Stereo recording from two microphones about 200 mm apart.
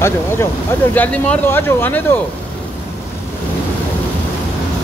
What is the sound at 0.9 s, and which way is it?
Speech, 10° left (ahead or behind).